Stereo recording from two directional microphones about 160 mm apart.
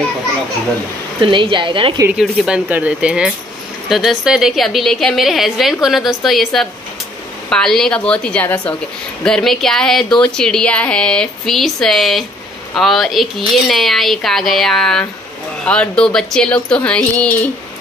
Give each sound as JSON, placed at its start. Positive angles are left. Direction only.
{"t": 1.2, "sound": "a woman's voice", "side_deg": -30}
{"t": 2.4, "sound": "speech", "side_deg": -10}